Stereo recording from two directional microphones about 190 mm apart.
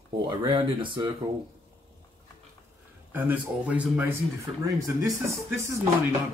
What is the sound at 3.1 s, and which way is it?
Speech, 10° right (ahead or behind).